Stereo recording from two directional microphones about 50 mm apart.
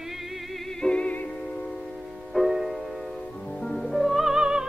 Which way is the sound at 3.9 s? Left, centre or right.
Centre.